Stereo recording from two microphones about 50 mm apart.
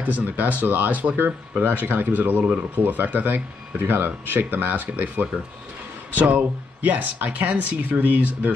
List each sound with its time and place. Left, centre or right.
0.0 s speech: right